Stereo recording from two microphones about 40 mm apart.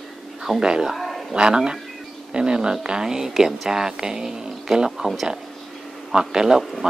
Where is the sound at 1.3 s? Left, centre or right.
Right.